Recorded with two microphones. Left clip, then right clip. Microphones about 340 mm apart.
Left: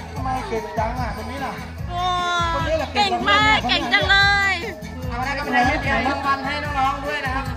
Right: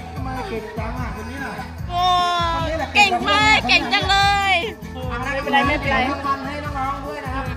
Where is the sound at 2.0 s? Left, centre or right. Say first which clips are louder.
Right 3 dB; centre.